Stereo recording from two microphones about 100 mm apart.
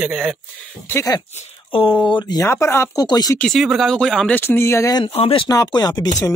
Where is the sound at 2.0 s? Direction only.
50° left (ahead or behind).